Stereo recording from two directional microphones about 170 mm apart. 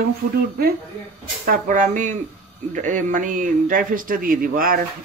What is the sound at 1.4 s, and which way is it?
A man's voice, 55° right (ahead or behind).